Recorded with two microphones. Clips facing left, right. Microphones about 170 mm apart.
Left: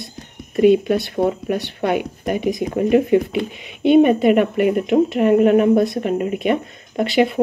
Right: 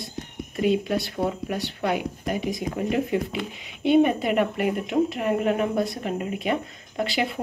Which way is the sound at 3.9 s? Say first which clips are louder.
Left 7 dB; 70° left (ahead or behind).